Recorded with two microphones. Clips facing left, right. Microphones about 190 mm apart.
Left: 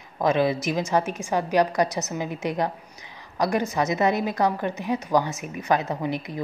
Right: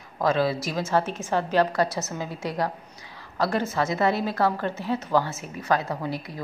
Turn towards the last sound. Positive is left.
turn(degrees=20)  # may be behind; listen again after turning